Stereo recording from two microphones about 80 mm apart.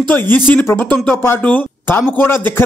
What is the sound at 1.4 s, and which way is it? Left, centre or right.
A man's voice, centre.